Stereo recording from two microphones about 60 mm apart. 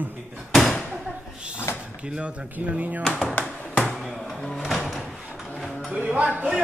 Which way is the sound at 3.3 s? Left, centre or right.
Left.